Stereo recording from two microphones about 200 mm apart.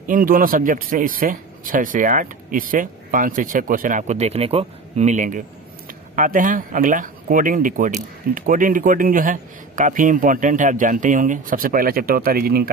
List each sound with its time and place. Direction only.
0.0 s speech: 45° right (ahead or behind)